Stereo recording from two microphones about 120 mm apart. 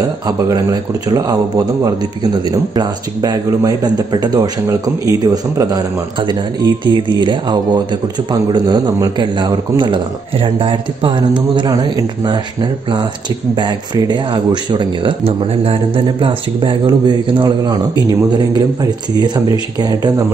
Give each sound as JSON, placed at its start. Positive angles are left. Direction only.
{"t": 0.5, "sound": "speech", "side_deg": -30}
{"t": 2.5, "sound": "speech", "side_deg": -35}
{"t": 13.6, "sound": "speech", "side_deg": -40}
{"t": 15.2, "sound": "speech", "side_deg": -55}